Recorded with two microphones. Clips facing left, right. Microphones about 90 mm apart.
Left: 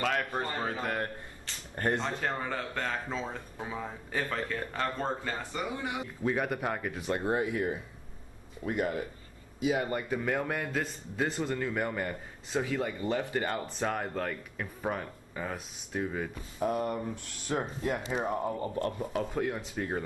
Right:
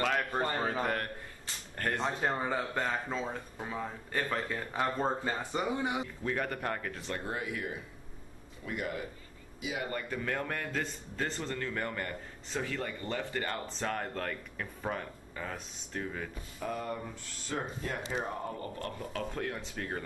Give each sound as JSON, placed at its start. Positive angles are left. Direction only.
{"t": 0.0, "sound": "speech", "side_deg": 0}
{"t": 2.0, "sound": "speech", "side_deg": -15}
{"t": 4.7, "sound": "speech", "side_deg": -15}
{"t": 6.2, "sound": "a man's voice", "side_deg": 10}
{"t": 7.2, "sound": "a man's voice", "side_deg": 30}
{"t": 9.8, "sound": "a man's voice", "side_deg": 15}
{"t": 16.5, "sound": "a man's voice", "side_deg": 20}